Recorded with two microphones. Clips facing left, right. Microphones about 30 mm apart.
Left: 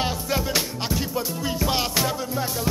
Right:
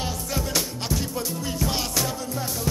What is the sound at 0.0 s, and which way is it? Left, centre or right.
Music, left.